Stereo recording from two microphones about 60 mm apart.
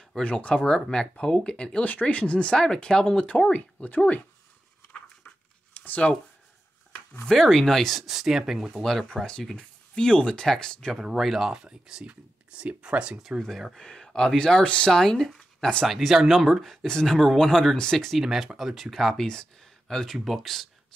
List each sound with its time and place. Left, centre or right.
0.2 s speech: centre
1.9 s speech: left
4.9 s a sound: centre
5.8 s speech: left
7.2 s speech: centre
9.0 s speech: centre
10.9 s speech: centre
13.4 s speech: centre
18.2 s speech: centre